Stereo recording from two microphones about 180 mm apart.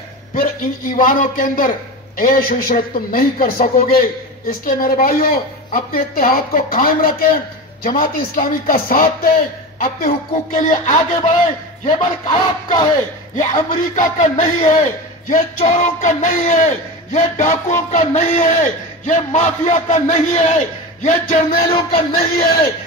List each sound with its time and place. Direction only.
0.3 s speech: 50° left (ahead or behind)
13.4 s speech: 45° left (ahead or behind)
21.6 s a sound: 30° left (ahead or behind)